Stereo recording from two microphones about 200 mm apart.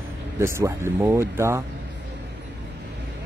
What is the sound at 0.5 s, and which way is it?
Speech, 15° right (ahead or behind).